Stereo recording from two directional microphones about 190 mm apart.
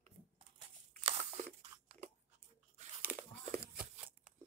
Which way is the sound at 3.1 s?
10° right (ahead or behind).